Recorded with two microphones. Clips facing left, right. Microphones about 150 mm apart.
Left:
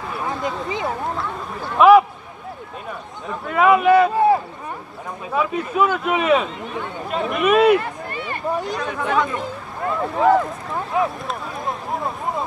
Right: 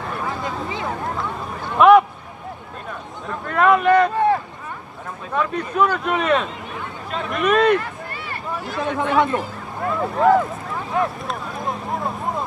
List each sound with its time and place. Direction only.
1.8 s speech: centre (ahead or behind)
3.3 s speech: 5° left (ahead or behind)
8.1 s a sound: 20° left (ahead or behind)
8.9 s speech: 25° right (ahead or behind)
9.9 s speech: centre (ahead or behind)
10.9 s a sound: centre (ahead or behind)